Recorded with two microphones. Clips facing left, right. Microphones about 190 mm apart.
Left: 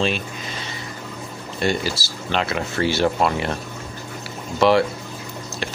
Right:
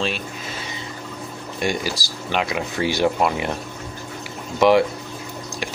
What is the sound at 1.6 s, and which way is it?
Speech, 15° right (ahead or behind).